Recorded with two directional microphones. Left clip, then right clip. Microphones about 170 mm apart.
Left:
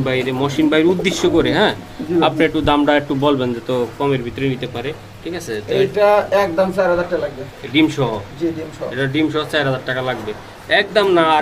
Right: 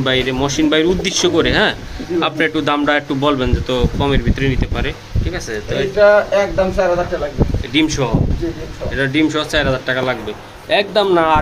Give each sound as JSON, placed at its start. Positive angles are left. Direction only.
{"t": 0.0, "sound": "speech", "side_deg": 0}
{"t": 5.9, "sound": "speech", "side_deg": 70}
{"t": 7.7, "sound": "speech", "side_deg": 0}